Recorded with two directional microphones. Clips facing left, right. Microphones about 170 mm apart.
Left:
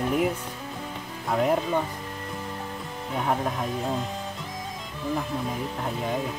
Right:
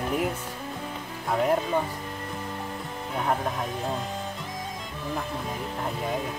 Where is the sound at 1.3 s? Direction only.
Centre (ahead or behind).